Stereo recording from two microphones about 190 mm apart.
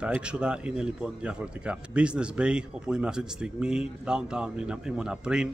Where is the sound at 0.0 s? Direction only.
5° right (ahead or behind).